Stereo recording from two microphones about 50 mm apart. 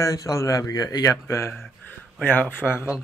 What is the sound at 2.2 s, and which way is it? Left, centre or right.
Speech, left.